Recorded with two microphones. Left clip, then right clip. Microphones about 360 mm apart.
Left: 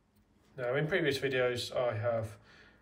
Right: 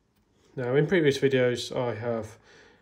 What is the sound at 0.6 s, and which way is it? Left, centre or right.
Speech, centre.